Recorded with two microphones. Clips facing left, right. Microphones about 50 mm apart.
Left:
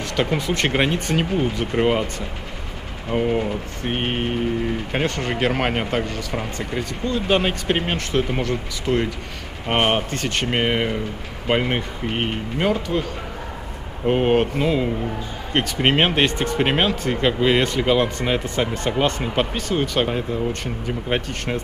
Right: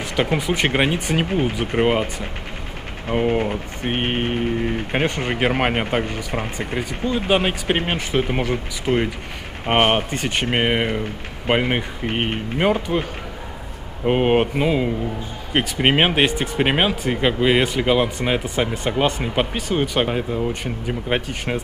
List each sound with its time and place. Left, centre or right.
0.0 s speech: centre
14.0 s speech: centre